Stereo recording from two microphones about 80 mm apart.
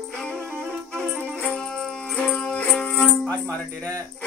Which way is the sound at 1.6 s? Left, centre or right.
Centre.